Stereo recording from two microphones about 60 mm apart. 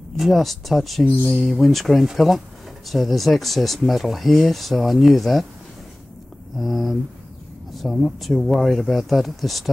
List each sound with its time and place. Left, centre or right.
0.2 s speech: centre
6.6 s speech: centre